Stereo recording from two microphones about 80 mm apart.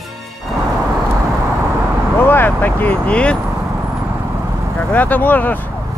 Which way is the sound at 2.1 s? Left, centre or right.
Left.